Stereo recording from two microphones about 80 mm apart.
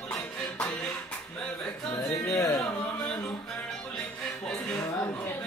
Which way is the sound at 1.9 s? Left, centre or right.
Left.